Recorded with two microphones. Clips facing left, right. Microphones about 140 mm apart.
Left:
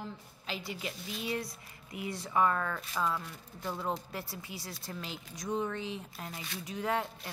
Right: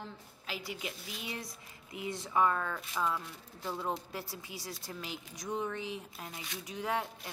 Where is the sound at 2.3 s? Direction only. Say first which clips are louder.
Left 1 dB; 10° right (ahead or behind).